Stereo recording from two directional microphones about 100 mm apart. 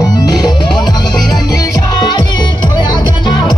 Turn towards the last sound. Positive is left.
turn(degrees=45)  # may be behind; listen again after turning